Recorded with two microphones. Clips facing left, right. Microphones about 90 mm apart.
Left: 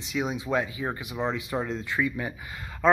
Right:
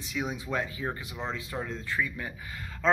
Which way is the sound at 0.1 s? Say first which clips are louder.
Left 5 dB; 20° left (ahead or behind).